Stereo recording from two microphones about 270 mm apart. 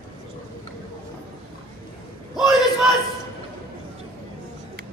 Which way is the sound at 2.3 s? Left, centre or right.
Centre.